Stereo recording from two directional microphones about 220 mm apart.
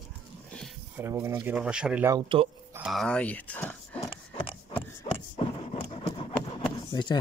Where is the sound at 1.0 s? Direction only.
10° right (ahead or behind); by 4.0 s 5° left (ahead or behind).